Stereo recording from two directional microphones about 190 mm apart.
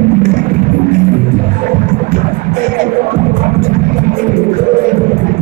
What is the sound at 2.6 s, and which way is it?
Music, 45° right (ahead or behind).